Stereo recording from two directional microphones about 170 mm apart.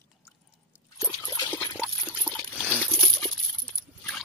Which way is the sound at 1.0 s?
20° left (ahead or behind).